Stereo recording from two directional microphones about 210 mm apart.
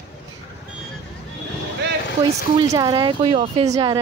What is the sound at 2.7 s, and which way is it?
Speech, 20° right (ahead or behind).